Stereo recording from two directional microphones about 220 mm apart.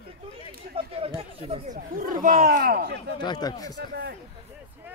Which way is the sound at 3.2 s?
20° left (ahead or behind).